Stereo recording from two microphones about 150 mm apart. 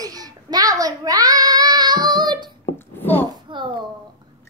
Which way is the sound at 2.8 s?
15° left (ahead or behind).